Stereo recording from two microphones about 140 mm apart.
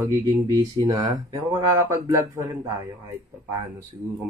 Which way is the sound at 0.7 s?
35° right (ahead or behind).